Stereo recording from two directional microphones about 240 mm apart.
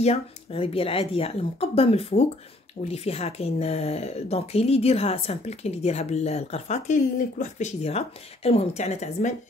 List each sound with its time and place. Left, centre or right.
0.0 s speech: left